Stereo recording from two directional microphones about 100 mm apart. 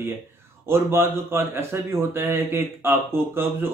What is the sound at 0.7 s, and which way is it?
A man's voice, 25° right (ahead or behind).